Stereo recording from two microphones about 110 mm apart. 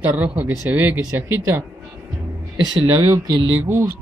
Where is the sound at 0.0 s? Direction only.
15° right (ahead or behind).